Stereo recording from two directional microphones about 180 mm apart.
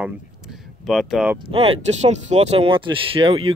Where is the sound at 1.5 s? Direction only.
30° right (ahead or behind).